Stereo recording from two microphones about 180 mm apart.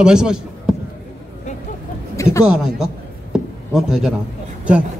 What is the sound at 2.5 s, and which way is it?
Speech, 5° right (ahead or behind).